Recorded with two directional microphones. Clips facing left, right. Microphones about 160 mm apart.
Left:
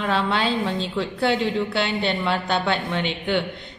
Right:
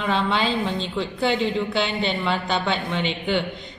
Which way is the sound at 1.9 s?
55° left (ahead or behind).